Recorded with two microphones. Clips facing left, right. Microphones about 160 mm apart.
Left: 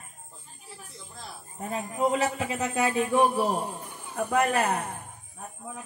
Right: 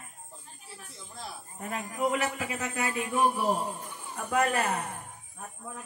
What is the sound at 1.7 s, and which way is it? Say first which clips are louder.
A woman's voice: left 3 dB; 25° left (ahead or behind).